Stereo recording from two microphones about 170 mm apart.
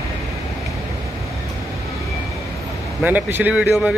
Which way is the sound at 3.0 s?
10° right (ahead or behind).